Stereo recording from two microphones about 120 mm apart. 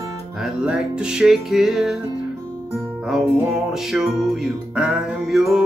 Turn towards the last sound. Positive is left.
turn(degrees=0)  # may be behind; listen again after turning